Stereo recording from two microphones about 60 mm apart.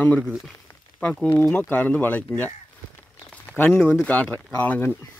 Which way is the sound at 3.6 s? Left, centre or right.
Left.